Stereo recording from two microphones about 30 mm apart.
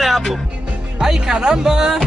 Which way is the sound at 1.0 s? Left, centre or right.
Right.